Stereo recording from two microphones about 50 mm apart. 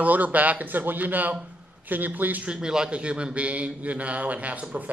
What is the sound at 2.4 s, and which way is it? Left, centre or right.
A man's voice, centre.